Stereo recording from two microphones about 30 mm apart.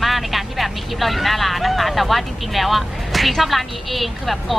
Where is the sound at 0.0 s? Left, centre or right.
Centre.